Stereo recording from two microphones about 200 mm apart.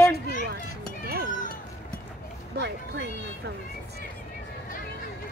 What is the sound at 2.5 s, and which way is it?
Speech, 60° right (ahead or behind).